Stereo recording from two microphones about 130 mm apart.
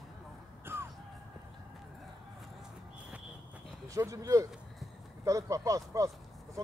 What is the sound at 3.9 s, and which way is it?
Speech, 25° right (ahead or behind).